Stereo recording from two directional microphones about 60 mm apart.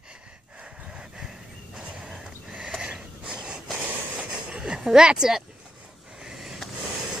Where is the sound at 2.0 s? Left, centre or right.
Centre.